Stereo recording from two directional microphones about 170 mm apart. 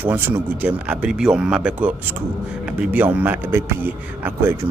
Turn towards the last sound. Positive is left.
turn(degrees=-15)  # may be behind; listen again after turning